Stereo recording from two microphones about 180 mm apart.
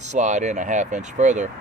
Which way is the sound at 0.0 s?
40° right (ahead or behind).